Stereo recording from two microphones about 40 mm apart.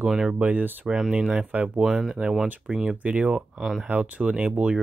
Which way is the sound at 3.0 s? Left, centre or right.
Right.